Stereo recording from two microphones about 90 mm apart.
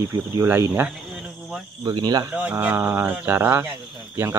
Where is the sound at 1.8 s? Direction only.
50° right (ahead or behind).